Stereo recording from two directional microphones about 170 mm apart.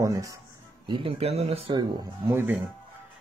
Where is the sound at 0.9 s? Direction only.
35° right (ahead or behind).